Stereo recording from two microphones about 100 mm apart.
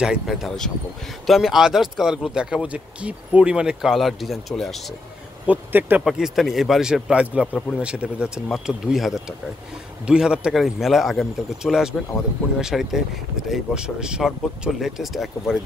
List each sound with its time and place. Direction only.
0.0 s speech: 5° right (ahead or behind)
5.5 s speech: 20° right (ahead or behind)
6.0 s speech: centre (ahead or behind)